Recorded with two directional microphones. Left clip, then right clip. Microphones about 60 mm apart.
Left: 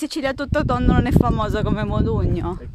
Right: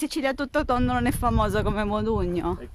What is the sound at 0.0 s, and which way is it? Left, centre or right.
Speech, left.